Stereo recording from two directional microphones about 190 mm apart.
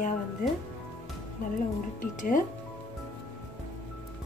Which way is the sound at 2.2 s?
45° left (ahead or behind).